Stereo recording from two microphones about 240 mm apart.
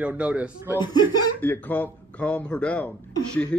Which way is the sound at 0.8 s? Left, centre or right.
Centre.